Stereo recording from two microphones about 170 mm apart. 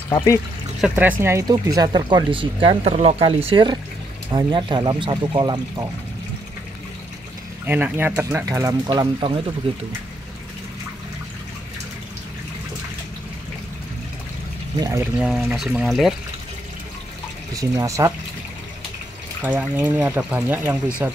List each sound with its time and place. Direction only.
0.7 s speech: 5° right (ahead or behind)
1.2 s speech: 20° right (ahead or behind)
7.6 s speech: 10° right (ahead or behind); by 9.8 s 30° right (ahead or behind)
14.8 s speech: 15° right (ahead or behind)
15.2 s speech: 5° right (ahead or behind)
17.6 s speech: 20° right (ahead or behind)
19.4 s speech: 10° right (ahead or behind)